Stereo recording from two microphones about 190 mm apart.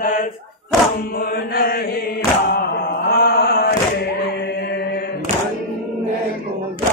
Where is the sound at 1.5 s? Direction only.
50° left (ahead or behind).